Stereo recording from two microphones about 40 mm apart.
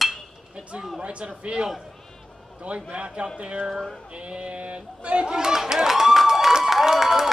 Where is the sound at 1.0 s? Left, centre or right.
Right.